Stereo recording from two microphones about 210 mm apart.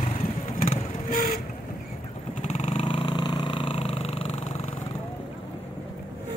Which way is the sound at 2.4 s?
30° left (ahead or behind).